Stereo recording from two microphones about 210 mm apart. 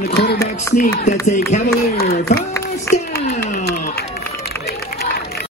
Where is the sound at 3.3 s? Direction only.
35° left (ahead or behind).